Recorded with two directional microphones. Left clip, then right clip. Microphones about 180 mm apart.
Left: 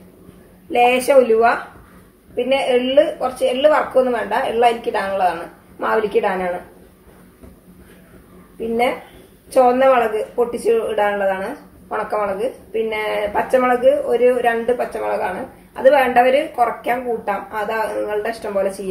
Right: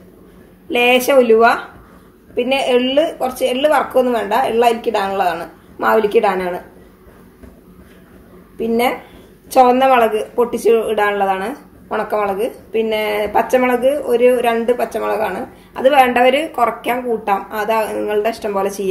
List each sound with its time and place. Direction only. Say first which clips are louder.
0.7 s a woman's voice: right 1 dB; 45° right (ahead or behind)
8.5 s a woman's voice: right 2 dB; 55° right (ahead or behind)
15.7 s a woman's voice: right 1 dB; 45° right (ahead or behind)